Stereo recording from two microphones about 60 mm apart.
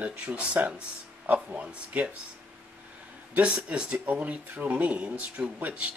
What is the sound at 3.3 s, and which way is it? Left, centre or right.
Speech, right.